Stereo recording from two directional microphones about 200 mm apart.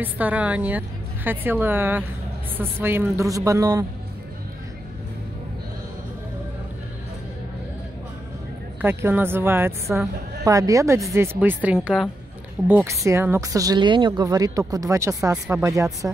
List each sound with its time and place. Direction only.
0.0 s speech: 10° right (ahead or behind)
8.8 s speech: 10° right (ahead or behind)